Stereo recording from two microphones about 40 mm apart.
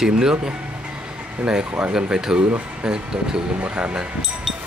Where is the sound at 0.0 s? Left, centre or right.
Centre.